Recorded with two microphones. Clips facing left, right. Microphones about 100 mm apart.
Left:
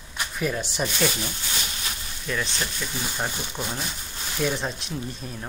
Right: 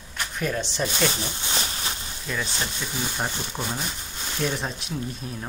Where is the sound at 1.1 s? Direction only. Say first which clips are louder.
Right 2 dB; 30° right (ahead or behind).